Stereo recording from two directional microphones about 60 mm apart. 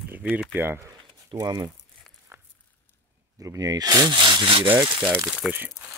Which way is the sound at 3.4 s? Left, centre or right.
Right.